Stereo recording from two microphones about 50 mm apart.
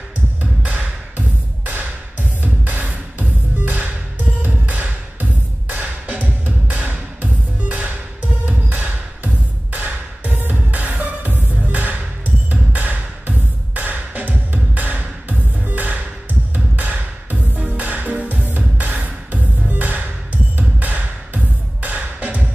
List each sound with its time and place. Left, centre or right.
0.6 s music: right
2.4 s music: right